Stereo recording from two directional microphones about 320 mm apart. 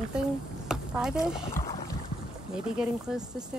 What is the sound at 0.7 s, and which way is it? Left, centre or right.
Speech, centre.